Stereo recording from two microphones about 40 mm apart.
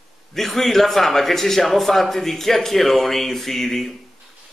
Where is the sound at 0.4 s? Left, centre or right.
Centre.